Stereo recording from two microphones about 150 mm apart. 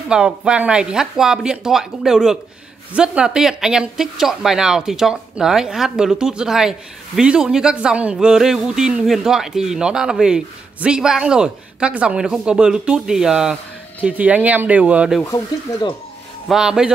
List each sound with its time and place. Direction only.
0.1 s speech: 5° right (ahead or behind)
15.2 s speech: 20° left (ahead or behind)
16.4 s speech: 5° right (ahead or behind)